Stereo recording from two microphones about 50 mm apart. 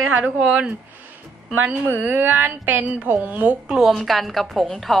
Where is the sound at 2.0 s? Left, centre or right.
Right.